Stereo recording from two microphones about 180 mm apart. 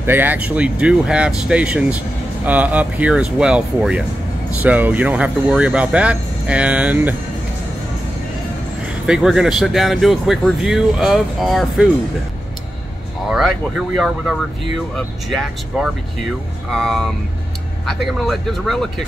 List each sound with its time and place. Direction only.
0.0 s speech: 10° right (ahead or behind)
9.0 s speech: 5° right (ahead or behind)
13.3 s speech: centre (ahead or behind)